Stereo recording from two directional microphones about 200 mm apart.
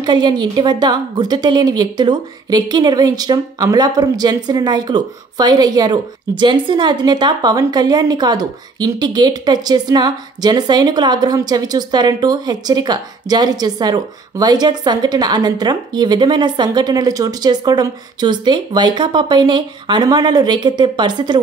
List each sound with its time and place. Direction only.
0.0 s a woman's voice: 20° right (ahead or behind)